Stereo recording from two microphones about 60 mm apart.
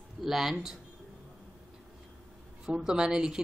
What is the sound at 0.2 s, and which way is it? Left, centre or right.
Speech, centre.